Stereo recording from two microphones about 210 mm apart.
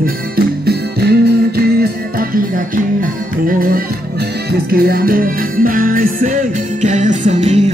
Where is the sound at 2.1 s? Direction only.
40° right (ahead or behind).